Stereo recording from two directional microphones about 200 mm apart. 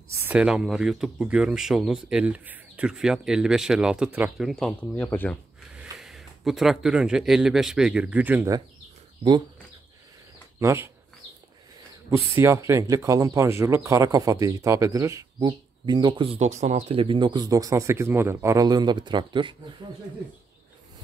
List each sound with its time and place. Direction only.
0.1 s speech: 10° right (ahead or behind)
10.6 s speech: 10° right (ahead or behind)
12.4 s speech: 15° right (ahead or behind)